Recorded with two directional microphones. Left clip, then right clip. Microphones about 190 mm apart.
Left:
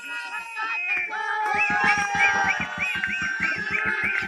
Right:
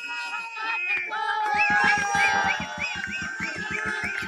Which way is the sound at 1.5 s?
50° left (ahead or behind).